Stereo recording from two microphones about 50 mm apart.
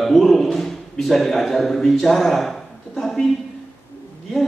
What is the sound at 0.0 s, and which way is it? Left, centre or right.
A man's voice, centre.